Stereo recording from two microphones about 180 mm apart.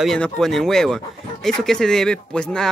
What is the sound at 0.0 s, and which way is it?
Speech, centre (ahead or behind).